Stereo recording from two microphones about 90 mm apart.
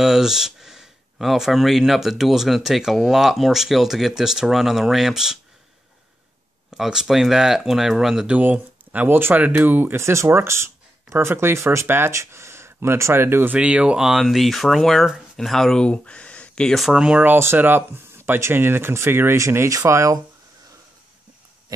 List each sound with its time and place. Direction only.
0.0 s speech: 5° right (ahead or behind)
6.7 s speech: 5° right (ahead or behind)
8.4 s speech: 20° right (ahead or behind)
13.6 s speech: 10° right (ahead or behind); by 16.8 s 10° left (ahead or behind)
16.8 s speech: 10° right (ahead or behind)
17.2 s speech: 25° right (ahead or behind)